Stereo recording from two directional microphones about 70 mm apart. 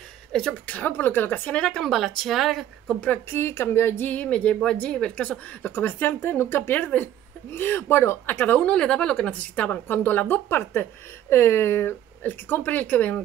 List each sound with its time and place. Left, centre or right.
0.3 s speech: centre
0.7 s a woman's voice: left
1.8 s speech: centre
3.3 s a woman's voice: left; by 5.7 s centre
5.7 s speech: left
8.3 s a woman's voice: left
8.6 s a woman's voice: centre